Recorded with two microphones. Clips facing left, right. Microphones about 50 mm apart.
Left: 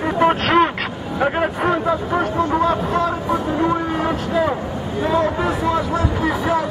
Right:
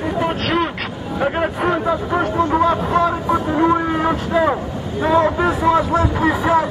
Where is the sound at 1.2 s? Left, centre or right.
Centre.